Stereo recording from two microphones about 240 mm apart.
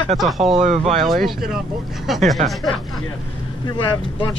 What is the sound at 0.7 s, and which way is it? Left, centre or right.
Speech, right.